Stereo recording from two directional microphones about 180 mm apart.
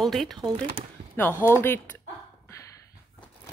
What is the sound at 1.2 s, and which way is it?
Speech, 10° left (ahead or behind).